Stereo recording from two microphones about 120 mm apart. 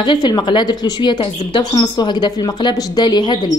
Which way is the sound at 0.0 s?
35° left (ahead or behind).